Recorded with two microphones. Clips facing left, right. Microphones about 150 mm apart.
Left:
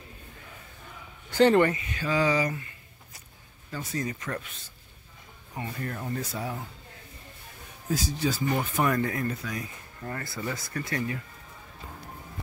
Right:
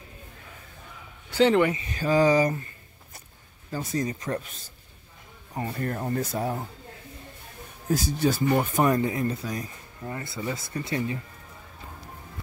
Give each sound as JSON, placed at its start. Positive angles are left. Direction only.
{"t": 1.8, "sound": "speech", "side_deg": -35}
{"t": 3.7, "sound": "speech", "side_deg": -35}
{"t": 5.6, "sound": "speech", "side_deg": -40}
{"t": 7.9, "sound": "speech", "side_deg": -50}
{"t": 8.8, "sound": "speech", "side_deg": -25}
{"t": 10.0, "sound": "speech", "side_deg": -20}